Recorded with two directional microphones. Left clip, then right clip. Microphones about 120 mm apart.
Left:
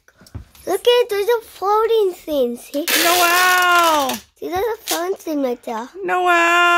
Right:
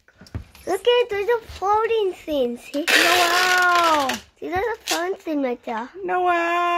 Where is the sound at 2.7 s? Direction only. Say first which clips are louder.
Right 1 dB; 30° left (ahead or behind).